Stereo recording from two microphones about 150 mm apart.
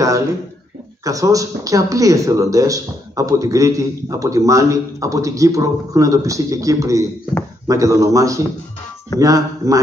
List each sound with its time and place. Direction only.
1.0 s speech: 20° right (ahead or behind)